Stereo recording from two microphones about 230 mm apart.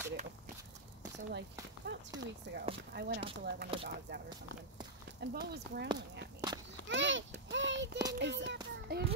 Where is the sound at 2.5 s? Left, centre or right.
Right.